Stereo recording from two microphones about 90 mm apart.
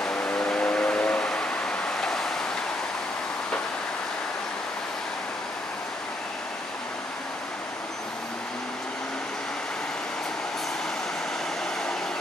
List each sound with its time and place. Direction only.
0.0 s vehicle: 10° left (ahead or behind)